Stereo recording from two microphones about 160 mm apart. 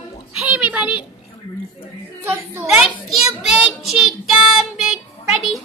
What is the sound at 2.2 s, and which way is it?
Speech, 15° right (ahead or behind).